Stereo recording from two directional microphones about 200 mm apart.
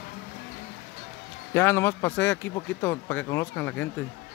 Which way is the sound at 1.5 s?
10° left (ahead or behind).